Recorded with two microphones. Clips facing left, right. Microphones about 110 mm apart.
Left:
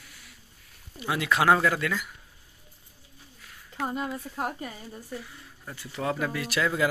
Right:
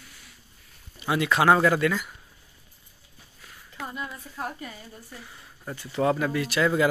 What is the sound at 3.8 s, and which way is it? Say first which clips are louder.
Speech: left 5 dB; 35° left (ahead or behind).